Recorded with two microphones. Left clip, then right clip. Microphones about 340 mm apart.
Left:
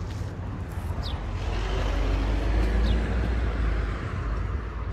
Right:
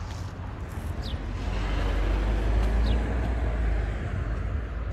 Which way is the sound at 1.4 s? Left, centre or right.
Left.